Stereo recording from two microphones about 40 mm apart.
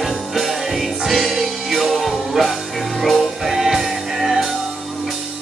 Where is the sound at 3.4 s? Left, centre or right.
Centre.